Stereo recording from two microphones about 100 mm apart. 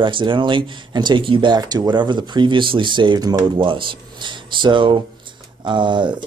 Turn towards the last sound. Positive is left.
turn(degrees=-50)  # may be behind; listen again after turning